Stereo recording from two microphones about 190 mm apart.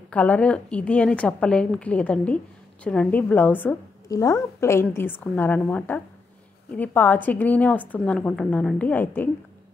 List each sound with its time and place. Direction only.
0.1 s a woman's voice: 5° left (ahead or behind)